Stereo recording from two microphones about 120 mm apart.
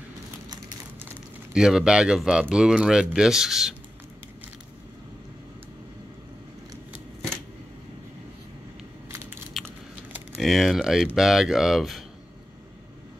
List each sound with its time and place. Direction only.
1.5 s speech: 5° right (ahead or behind)
9.1 s crushing: 20° right (ahead or behind)
10.3 s speech: centre (ahead or behind)